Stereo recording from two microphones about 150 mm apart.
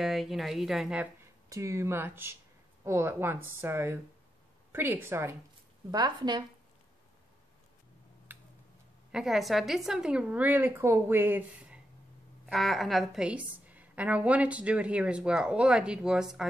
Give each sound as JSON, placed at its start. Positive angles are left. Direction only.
{"t": 0.0, "sound": "a woman's voice", "side_deg": 0}
{"t": 1.5, "sound": "a woman's voice", "side_deg": -20}
{"t": 5.9, "sound": "speech", "side_deg": -30}
{"t": 8.3, "sound": "a sound", "side_deg": -15}
{"t": 9.1, "sound": "a woman's voice", "side_deg": -5}
{"t": 12.4, "sound": "a woman's voice", "side_deg": 0}